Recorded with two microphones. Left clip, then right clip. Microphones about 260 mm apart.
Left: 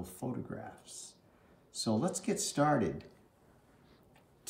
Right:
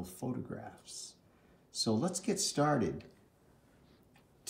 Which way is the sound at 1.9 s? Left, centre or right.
Centre.